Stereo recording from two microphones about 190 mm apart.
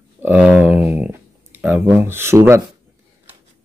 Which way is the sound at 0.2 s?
5° right (ahead or behind).